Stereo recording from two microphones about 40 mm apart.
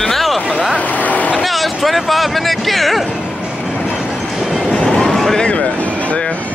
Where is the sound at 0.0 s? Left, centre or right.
Centre.